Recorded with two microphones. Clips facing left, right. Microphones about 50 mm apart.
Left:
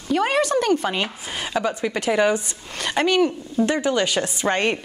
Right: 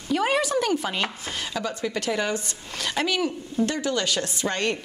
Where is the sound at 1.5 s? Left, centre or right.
Left.